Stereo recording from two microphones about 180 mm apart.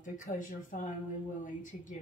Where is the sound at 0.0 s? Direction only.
45° left (ahead or behind).